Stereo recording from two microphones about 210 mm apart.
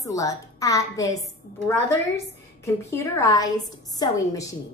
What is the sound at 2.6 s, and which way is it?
A woman's voice, 15° left (ahead or behind).